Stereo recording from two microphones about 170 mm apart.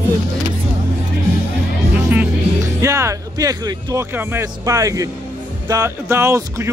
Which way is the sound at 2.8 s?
15° right (ahead or behind).